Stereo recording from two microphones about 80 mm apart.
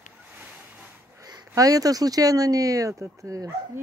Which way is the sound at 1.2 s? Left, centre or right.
Right.